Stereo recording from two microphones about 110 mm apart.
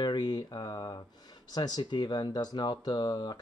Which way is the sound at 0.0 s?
40° left (ahead or behind).